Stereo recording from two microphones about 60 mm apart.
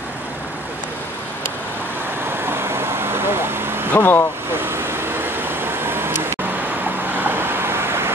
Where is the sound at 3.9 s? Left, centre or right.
Left.